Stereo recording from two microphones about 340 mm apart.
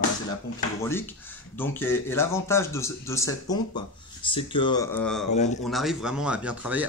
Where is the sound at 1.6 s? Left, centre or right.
Centre.